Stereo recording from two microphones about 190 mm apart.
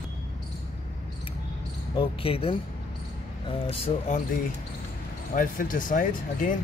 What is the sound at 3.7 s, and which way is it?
Speech, 30° left (ahead or behind).